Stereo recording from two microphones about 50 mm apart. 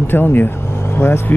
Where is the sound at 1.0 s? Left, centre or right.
Left.